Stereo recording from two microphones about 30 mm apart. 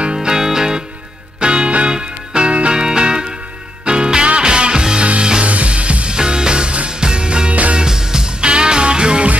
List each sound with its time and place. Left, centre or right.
0.0 s music: right
1.4 s music: right
5.4 s music: right
6.0 s music: right
7.7 s music: right